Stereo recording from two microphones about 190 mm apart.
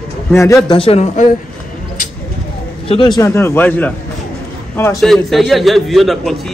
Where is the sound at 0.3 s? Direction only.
15° left (ahead or behind).